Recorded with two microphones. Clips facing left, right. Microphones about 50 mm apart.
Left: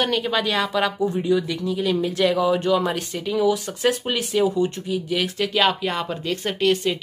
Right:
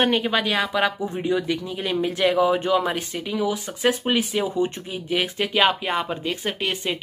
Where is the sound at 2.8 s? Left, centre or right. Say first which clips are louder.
Left 1 dB; centre.